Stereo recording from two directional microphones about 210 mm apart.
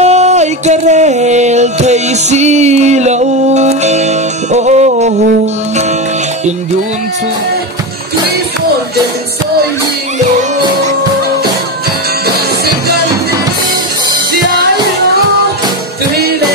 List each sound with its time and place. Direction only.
0.0 s music: 30° right (ahead or behind)